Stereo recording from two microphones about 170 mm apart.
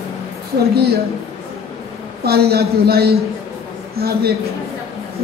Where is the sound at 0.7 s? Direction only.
70° right (ahead or behind).